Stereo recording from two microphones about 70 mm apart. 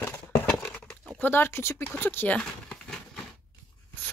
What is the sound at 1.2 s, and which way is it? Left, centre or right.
Speech, left.